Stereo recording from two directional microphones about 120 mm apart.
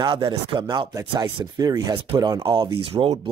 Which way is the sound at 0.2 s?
45° right (ahead or behind).